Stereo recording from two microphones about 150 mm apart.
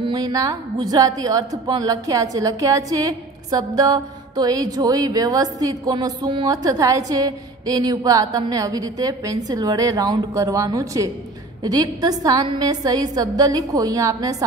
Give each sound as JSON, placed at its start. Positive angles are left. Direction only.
{"t": 0.0, "sound": "a woman's voice", "side_deg": -25}